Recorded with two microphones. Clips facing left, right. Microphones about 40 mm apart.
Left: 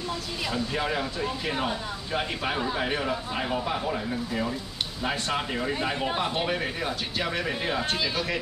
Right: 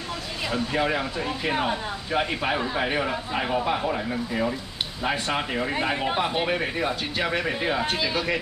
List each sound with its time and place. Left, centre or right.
0.7 s speech: centre